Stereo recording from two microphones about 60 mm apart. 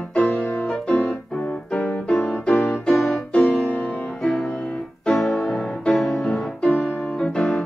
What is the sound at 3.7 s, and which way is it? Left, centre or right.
Music, left.